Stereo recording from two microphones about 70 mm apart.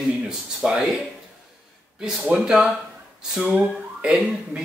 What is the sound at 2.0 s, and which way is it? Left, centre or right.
Speech, centre.